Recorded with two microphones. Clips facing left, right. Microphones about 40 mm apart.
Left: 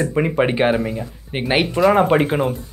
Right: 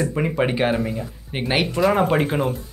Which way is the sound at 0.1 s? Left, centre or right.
Centre.